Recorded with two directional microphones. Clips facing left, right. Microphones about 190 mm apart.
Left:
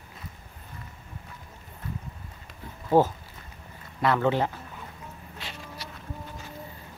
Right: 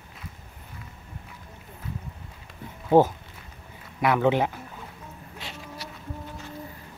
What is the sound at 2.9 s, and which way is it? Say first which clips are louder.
Speech: right 3 dB; 20° right (ahead or behind).